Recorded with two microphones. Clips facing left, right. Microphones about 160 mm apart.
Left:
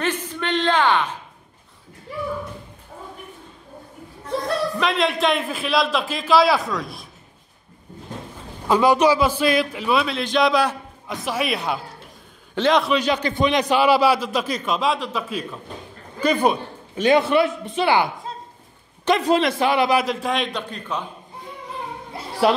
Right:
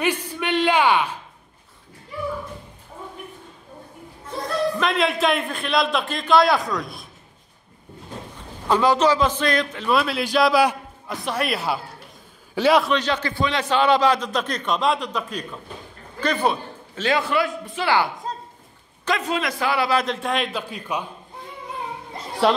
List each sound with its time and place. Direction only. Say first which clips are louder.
0.0 s a sound: right 1 dB; 10° right (ahead or behind)
4.7 s a man's voice: even; centre (ahead or behind)
8.6 s a man's voice: left 2 dB; 10° left (ahead or behind); by 12.9 s 5° right (ahead or behind)
12.9 s a man's voice: left 2 dB; 15° left (ahead or behind)
19.0 s a man's voice: left 6 dB; 30° left (ahead or behind)
19.6 s a man's voice: left 3 dB; 20° left (ahead or behind)
20.0 s a man's voice: left 1 dB; centre (ahead or behind)
22.4 s a man's voice: left 1 dB; 5° left (ahead or behind)